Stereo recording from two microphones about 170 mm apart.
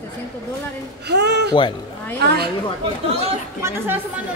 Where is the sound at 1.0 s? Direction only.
75° right (ahead or behind).